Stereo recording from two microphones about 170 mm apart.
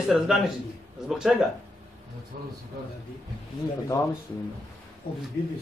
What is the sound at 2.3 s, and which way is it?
Speech, 55° right (ahead or behind).